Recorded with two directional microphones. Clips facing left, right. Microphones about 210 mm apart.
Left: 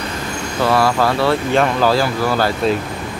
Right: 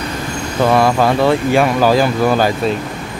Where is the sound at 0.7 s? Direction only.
20° right (ahead or behind).